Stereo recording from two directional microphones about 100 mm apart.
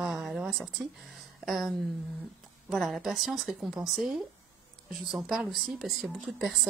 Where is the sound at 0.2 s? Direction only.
5° right (ahead or behind).